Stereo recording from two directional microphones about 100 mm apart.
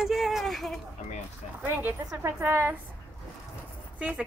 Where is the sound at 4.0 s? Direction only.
15° right (ahead or behind).